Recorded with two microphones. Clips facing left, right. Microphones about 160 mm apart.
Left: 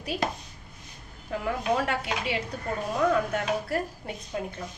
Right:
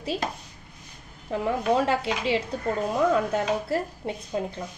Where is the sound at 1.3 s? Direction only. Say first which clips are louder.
Right 4 dB; 25° right (ahead or behind).